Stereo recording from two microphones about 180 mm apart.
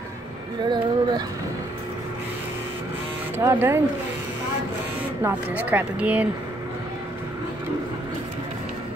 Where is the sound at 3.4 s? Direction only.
15° right (ahead or behind).